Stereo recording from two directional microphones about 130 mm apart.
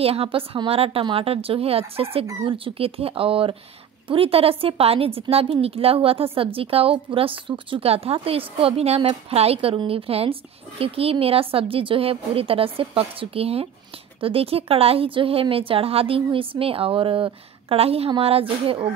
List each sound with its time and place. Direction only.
0.0 s a woman's voice: 50° right (ahead or behind)